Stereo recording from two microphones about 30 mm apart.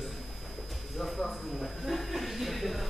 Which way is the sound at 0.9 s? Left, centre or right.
Centre.